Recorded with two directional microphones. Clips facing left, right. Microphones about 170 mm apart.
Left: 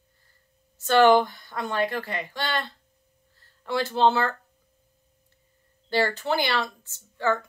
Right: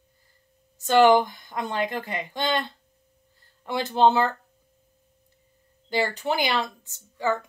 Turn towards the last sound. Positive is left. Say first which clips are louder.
# even
turn(degrees=-15)  # may be behind; listen again after turning